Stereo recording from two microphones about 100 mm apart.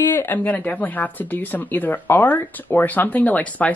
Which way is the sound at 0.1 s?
20° left (ahead or behind).